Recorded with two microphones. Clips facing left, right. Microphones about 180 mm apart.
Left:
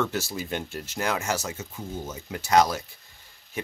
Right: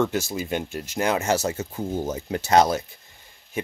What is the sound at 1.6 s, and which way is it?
Speech, 45° right (ahead or behind).